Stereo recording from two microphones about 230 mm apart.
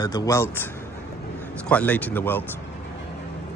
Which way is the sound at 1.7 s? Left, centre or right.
Centre.